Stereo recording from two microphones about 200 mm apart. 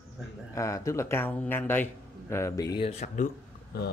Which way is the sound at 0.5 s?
15° left (ahead or behind).